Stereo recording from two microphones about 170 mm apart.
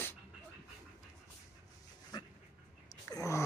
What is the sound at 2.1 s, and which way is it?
Dog, 25° left (ahead or behind).